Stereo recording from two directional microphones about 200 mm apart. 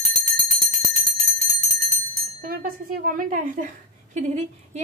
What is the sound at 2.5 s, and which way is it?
A woman's voice, 45° right (ahead or behind).